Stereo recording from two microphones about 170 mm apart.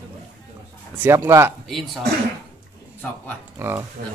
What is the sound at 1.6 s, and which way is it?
Speech, centre (ahead or behind).